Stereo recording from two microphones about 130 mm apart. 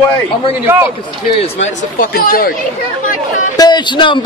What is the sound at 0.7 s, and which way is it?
Speech, 15° right (ahead or behind).